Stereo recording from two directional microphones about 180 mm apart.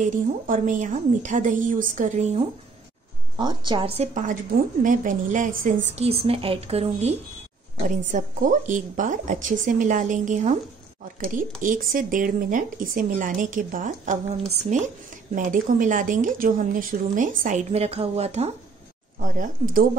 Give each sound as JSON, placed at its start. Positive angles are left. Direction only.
{"t": 0.0, "sound": "speech", "side_deg": -45}
{"t": 3.3, "sound": "a woman's voice", "side_deg": -25}
{"t": 5.9, "sound": "a woman's voice", "side_deg": -35}
{"t": 8.1, "sound": "speech", "side_deg": -45}
{"t": 11.6, "sound": "speech", "side_deg": -50}
{"t": 19.3, "sound": "speech", "side_deg": -50}